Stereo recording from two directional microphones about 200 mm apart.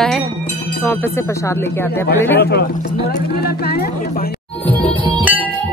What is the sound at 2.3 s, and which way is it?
Speech, 55° left (ahead or behind).